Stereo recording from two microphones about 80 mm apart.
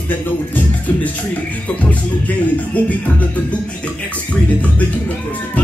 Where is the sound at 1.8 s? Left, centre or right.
Centre.